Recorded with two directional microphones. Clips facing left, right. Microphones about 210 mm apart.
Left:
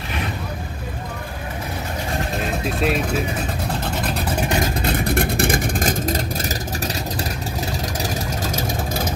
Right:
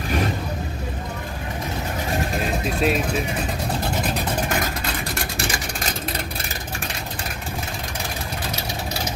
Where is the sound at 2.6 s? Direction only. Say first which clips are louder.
Left 1 dB; centre (ahead or behind).